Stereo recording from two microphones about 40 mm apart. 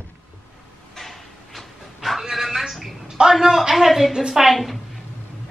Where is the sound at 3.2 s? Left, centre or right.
Centre.